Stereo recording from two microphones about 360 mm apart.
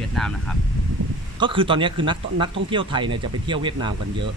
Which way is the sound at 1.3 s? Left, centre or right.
Centre.